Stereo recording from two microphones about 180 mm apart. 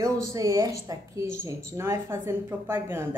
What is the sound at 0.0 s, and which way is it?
Speech, 20° right (ahead or behind).